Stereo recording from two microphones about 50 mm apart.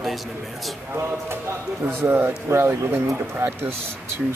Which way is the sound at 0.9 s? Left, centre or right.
Right.